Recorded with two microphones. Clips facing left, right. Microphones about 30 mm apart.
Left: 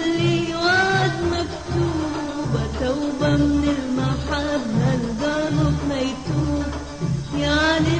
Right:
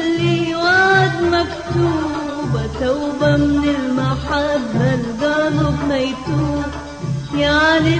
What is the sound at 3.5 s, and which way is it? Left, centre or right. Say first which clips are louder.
Music: right 4 dB; right.